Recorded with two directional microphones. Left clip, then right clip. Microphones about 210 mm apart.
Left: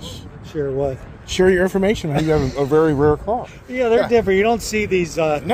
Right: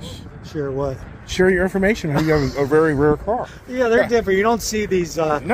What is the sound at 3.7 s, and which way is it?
Speech, 45° right (ahead or behind).